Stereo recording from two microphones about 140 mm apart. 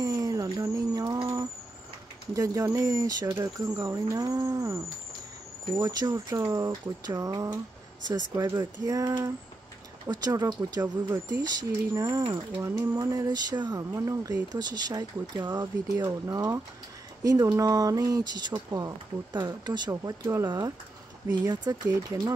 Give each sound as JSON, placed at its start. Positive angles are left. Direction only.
{"t": 0.0, "sound": "a sound", "side_deg": -25}
{"t": 2.3, "sound": "speech", "side_deg": -20}
{"t": 21.9, "sound": "speech", "side_deg": -25}